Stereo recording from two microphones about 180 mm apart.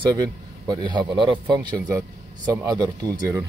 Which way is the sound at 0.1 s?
20° right (ahead or behind).